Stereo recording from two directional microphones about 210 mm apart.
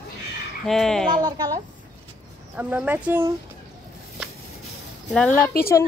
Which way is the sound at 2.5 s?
5° right (ahead or behind).